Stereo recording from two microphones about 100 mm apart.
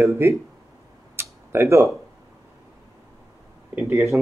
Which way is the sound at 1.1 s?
25° right (ahead or behind).